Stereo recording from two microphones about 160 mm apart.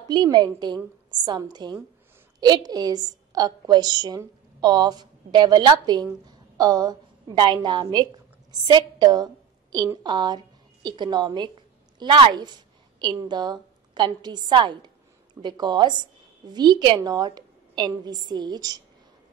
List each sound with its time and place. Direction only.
0.1 s a woman's voice: 25° right (ahead or behind)